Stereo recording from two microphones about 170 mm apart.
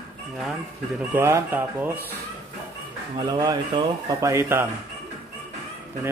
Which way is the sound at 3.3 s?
25° right (ahead or behind).